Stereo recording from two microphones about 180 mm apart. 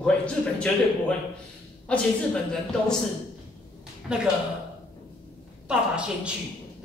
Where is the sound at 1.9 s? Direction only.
5° left (ahead or behind).